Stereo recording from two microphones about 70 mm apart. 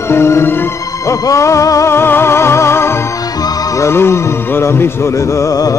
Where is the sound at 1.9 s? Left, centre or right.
Left.